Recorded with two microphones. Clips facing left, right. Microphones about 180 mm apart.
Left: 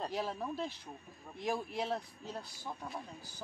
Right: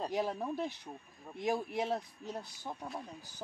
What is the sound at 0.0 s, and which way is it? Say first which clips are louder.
Speech: right 3 dB; 15° right (ahead or behind).